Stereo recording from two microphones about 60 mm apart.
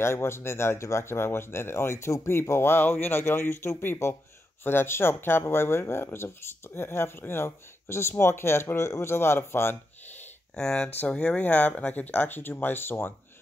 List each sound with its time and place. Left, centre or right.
0.0 s speech: left
10.5 s speech: centre; by 13.1 s left